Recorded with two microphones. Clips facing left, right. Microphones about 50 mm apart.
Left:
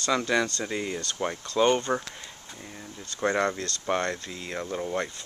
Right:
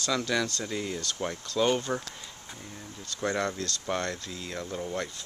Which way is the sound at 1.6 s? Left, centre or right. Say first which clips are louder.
Left 4 dB; centre.